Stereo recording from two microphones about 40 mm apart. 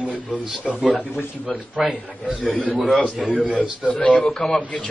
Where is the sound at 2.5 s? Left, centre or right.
Right.